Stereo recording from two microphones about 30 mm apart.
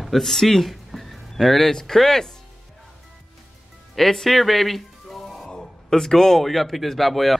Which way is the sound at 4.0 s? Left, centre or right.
Centre.